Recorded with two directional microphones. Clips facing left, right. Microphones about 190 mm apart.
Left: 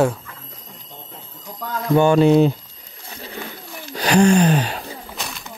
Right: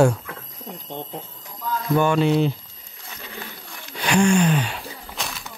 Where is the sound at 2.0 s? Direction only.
40° left (ahead or behind).